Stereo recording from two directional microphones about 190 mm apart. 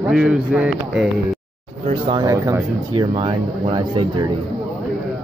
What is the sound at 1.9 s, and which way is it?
Speech, 25° right (ahead or behind).